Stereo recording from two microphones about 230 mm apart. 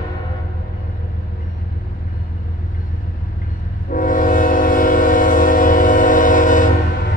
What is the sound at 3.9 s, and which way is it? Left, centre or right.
Train, left.